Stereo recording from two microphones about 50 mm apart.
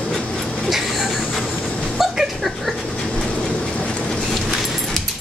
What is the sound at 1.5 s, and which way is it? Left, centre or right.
Dog, centre.